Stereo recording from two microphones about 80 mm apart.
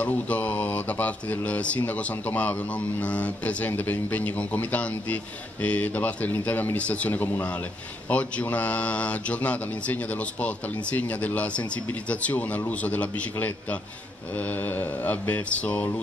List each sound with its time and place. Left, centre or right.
0.0 s speech: centre